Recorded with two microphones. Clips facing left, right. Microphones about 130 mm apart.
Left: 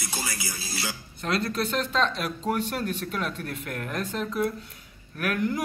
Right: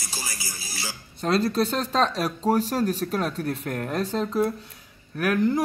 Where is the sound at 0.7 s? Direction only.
65° left (ahead or behind).